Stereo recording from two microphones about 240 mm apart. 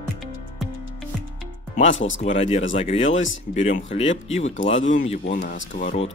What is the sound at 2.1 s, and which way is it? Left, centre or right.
Speech, left.